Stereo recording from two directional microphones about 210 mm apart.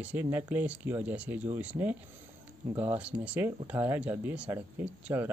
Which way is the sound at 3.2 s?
5° right (ahead or behind).